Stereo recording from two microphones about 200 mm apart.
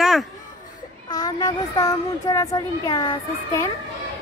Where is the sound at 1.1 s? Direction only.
20° left (ahead or behind).